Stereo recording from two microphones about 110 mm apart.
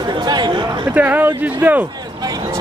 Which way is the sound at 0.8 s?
15° right (ahead or behind).